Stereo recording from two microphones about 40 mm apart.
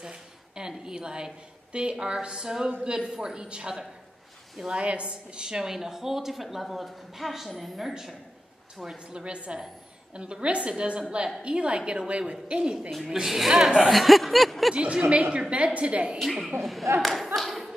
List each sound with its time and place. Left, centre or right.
0.0 s a sound: centre
2.2 s a woman's voice: centre
4.7 s a woman's voice: right
5.4 s a man's voice: centre
8.9 s a woman's voice: right
13.0 s a man's voice: centre
13.8 s a sound: centre
14.7 s a woman's voice: right
16.2 s a sound: centre
17.0 s clapping: centre